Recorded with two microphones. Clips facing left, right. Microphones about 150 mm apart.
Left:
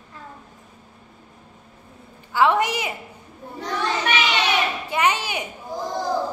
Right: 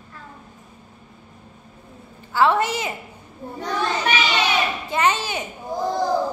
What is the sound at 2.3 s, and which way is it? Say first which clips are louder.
Speech: even; 15° left (ahead or behind).